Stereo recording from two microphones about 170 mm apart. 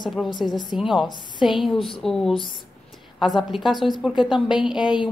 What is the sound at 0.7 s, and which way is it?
A woman's voice, 5° right (ahead or behind).